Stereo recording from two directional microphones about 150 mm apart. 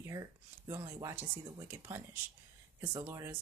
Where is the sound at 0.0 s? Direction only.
20° right (ahead or behind).